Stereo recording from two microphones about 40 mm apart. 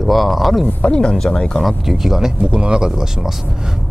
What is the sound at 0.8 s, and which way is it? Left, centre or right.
Speech, left.